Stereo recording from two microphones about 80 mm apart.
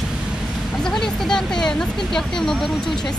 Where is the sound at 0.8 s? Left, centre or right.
Centre.